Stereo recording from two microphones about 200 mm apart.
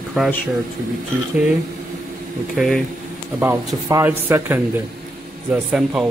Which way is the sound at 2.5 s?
Centre (ahead or behind).